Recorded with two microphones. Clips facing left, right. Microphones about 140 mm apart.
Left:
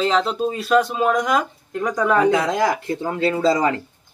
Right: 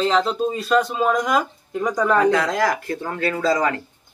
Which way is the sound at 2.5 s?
25° left (ahead or behind).